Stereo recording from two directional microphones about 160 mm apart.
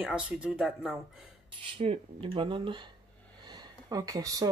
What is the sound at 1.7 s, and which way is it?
Speech, 35° right (ahead or behind).